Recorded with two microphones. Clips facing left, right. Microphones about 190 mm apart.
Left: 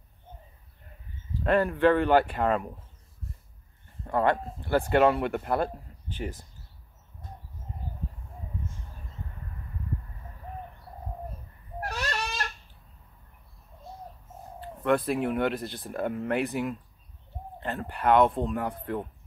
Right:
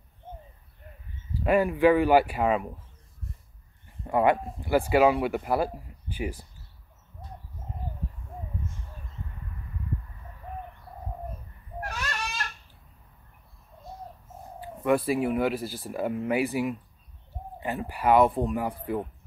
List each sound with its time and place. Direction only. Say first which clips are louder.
1.4 s speech: right 1 dB; 10° right (ahead or behind)
4.0 s speech: right 2 dB; 10° right (ahead or behind)
11.8 s a sound: left 2 dB; 35° left (ahead or behind)
14.6 s speech: right 1 dB; 10° right (ahead or behind)